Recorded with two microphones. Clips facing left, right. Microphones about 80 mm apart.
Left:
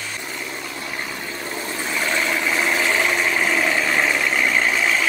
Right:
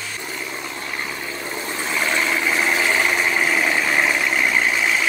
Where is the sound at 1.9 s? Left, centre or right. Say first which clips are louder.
Right 1 dB; right.